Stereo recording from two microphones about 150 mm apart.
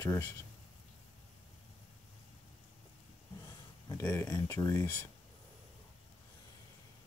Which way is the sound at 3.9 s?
15° left (ahead or behind).